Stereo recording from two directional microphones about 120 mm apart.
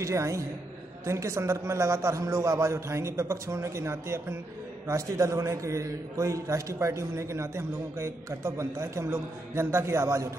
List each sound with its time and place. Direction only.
0.0 s a man's voice: 25° right (ahead or behind)